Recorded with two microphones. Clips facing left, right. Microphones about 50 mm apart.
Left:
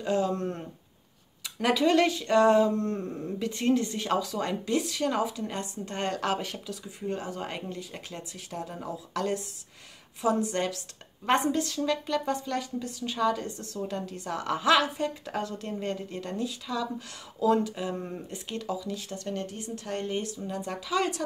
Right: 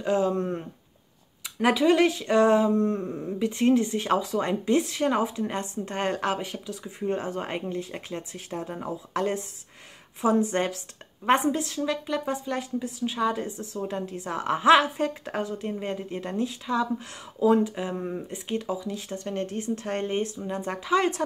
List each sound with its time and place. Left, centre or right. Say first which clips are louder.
0.0 s speech: right 3 dB; right
2.9 s speech: right 3 dB; centre
3.3 s speech: right 4 dB; centre
11.2 s speech: right 3 dB; centre